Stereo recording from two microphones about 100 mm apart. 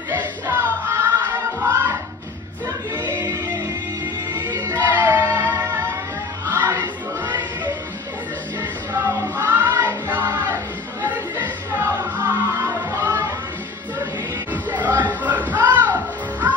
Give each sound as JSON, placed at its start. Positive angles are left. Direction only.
{"t": 0.1, "sound": "music", "side_deg": -20}
{"t": 4.7, "sound": "music", "side_deg": -20}
{"t": 6.5, "sound": "choir", "side_deg": -25}
{"t": 9.0, "sound": "music", "side_deg": -25}
{"t": 14.5, "sound": "music", "side_deg": -15}